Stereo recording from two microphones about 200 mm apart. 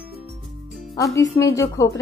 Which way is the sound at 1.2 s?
15° left (ahead or behind).